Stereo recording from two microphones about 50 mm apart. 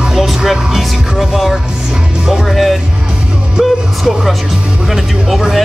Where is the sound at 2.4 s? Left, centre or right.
Centre.